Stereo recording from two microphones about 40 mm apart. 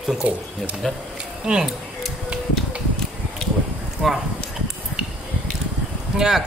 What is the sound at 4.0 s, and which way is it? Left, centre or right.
Speech, right.